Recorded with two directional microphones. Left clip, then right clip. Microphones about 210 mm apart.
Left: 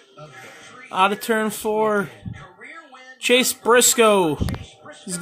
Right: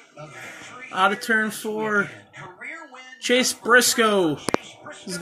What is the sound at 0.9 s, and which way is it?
A man's voice, 20° left (ahead or behind).